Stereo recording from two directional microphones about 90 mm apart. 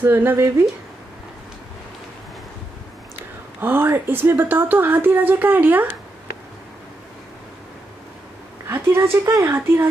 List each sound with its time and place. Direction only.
0.0 s speech: 25° right (ahead or behind)
3.6 s speech: 25° right (ahead or behind)
8.6 s a sound: 30° right (ahead or behind)
9.1 s speech: 35° right (ahead or behind)